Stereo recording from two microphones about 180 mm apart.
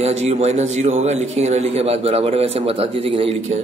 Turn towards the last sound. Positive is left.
turn(degrees=-35)  # may be behind; listen again after turning